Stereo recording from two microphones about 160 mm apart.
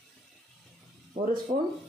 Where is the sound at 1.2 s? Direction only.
55° right (ahead or behind).